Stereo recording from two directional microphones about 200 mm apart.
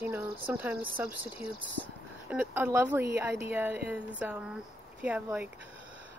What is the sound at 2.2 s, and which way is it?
Speech, 10° right (ahead or behind).